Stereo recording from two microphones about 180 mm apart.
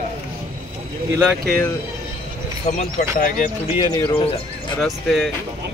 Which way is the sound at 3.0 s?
50° left (ahead or behind).